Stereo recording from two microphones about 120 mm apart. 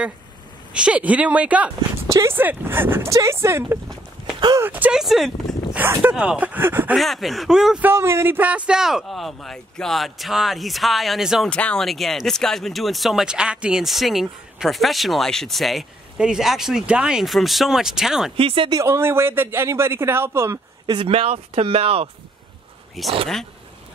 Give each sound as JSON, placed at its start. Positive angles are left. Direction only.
{"t": 0.7, "sound": "speech", "side_deg": -10}
{"t": 2.0, "sound": "speech", "side_deg": -25}
{"t": 4.9, "sound": "speech", "side_deg": 0}
{"t": 5.8, "sound": "speech", "side_deg": -15}
{"t": 6.9, "sound": "speech", "side_deg": 0}
{"t": 7.8, "sound": "speech", "side_deg": -20}
{"t": 11.4, "sound": "speech", "side_deg": 10}
{"t": 18.3, "sound": "speech", "side_deg": -50}
{"t": 18.7, "sound": "speech", "side_deg": -25}
{"t": 20.8, "sound": "speech", "side_deg": -45}
{"t": 23.0, "sound": "speech", "side_deg": 0}